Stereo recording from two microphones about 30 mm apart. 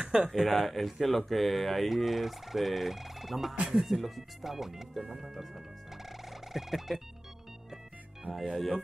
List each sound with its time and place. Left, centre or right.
0.0 s a sound: right
0.3 s speech: centre
6.0 s music: centre
8.3 s speech: centre